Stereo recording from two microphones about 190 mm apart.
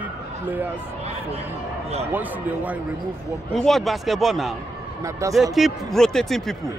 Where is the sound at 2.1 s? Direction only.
10° right (ahead or behind).